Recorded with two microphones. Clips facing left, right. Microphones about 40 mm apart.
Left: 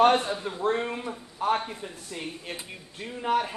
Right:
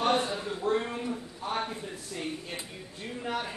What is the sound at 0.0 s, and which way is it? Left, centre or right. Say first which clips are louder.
A man's voice: left 6 dB; left.